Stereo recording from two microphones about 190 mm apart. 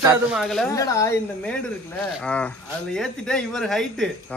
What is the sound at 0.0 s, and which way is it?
Speech, 5° right (ahead or behind).